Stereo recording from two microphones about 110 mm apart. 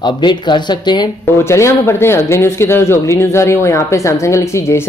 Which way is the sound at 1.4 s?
25° left (ahead or behind).